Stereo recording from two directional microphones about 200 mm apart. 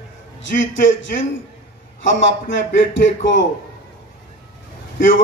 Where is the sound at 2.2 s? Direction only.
65° left (ahead or behind).